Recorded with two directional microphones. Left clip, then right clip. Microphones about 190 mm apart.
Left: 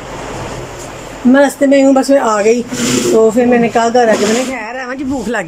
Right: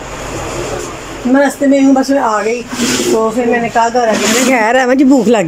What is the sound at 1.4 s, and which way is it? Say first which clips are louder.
Speech: left 1 dB; 10° left (ahead or behind).